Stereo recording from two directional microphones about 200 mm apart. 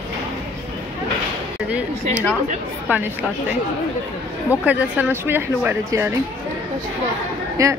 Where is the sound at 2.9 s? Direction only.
10° right (ahead or behind).